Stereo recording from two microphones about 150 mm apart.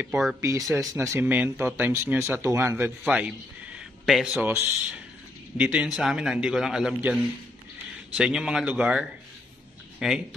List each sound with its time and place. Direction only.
0.0 s a man's voice: 5° right (ahead or behind)
0.4 s a man's voice: 20° right (ahead or behind); by 10.2 s 5° right (ahead or behind)